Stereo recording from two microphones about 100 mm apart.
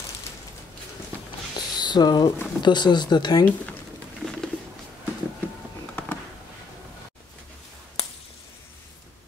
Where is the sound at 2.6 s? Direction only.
45° left (ahead or behind).